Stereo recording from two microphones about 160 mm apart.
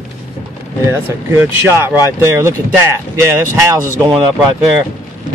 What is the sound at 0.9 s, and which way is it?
Speech, 15° right (ahead or behind).